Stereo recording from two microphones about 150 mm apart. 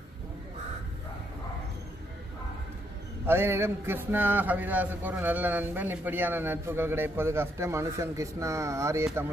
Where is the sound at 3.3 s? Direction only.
15° right (ahead or behind).